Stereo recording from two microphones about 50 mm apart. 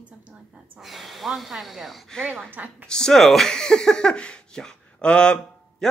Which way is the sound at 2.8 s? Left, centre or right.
Centre.